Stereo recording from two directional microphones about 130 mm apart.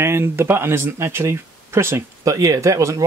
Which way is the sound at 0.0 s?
20° right (ahead or behind).